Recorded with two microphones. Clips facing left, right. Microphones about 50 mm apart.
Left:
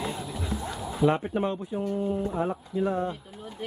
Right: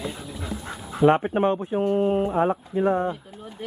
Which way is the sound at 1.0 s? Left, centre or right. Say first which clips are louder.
Right 6 dB; right.